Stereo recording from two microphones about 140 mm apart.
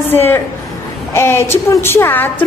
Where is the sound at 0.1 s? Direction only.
15° left (ahead or behind).